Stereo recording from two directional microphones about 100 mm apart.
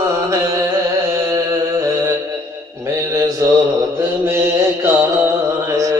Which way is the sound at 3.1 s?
35° right (ahead or behind).